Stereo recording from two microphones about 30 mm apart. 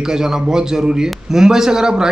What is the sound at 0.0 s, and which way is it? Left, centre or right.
A man's voice, right.